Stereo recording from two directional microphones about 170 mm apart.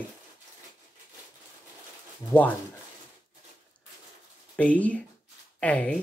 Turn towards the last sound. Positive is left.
turn(degrees=10)  # may be behind; listen again after turning